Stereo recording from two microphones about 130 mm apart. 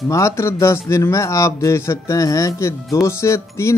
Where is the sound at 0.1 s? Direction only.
20° left (ahead or behind).